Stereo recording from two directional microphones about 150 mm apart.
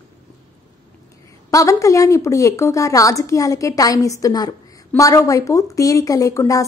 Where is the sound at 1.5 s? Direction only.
20° left (ahead or behind).